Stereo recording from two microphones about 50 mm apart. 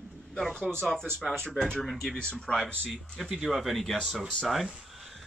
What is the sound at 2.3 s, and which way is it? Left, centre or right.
Speech, centre.